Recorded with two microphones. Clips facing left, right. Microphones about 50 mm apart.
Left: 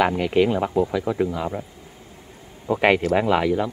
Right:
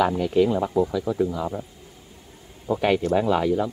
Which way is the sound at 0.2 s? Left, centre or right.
Left.